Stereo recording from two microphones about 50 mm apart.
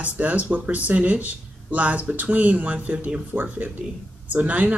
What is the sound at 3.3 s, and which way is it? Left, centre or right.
Speech, right.